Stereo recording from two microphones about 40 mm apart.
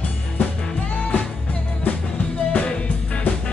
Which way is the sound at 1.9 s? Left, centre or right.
Left.